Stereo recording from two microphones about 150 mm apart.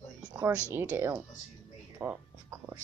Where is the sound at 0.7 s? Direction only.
15° right (ahead or behind).